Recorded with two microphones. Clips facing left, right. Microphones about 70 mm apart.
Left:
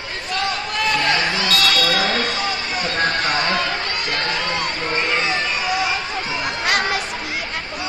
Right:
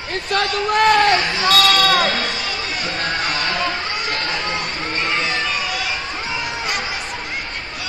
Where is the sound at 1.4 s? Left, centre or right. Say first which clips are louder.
Right 4 dB; right.